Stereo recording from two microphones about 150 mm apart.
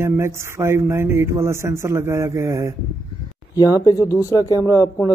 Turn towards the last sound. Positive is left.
turn(degrees=-15)  # may be behind; listen again after turning